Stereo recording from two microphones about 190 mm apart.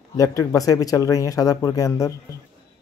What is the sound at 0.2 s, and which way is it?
Speech, 20° left (ahead or behind).